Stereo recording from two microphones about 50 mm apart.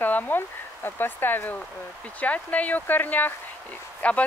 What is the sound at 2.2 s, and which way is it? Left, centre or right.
Speech, left.